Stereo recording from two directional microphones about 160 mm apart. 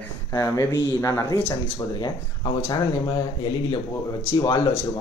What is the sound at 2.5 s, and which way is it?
Speech, 15° left (ahead or behind).